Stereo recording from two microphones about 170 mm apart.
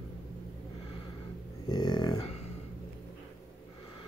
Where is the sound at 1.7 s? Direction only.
25° left (ahead or behind).